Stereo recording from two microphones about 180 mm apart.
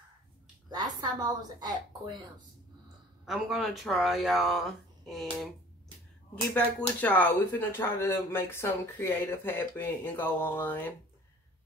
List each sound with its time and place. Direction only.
0.7 s a woman's voice: 20° right (ahead or behind)
3.3 s speech: centre (ahead or behind)
6.5 s speech: 10° left (ahead or behind)